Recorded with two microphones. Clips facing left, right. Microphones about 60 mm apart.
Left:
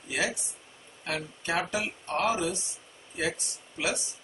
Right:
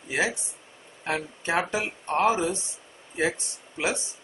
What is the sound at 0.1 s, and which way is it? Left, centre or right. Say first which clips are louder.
Speech: right 4 dB; right.